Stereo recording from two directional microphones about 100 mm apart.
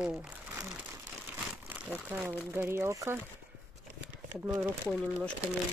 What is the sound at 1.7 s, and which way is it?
Speech, 15° right (ahead or behind).